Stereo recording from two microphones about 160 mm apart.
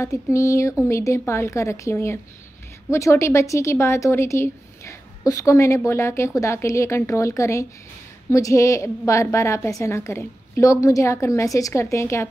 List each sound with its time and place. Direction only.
0.0 s a woman's voice: 20° left (ahead or behind)